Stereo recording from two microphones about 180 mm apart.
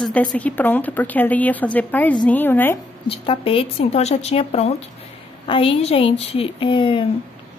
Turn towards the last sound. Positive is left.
turn(degrees=30)  # may be behind; listen again after turning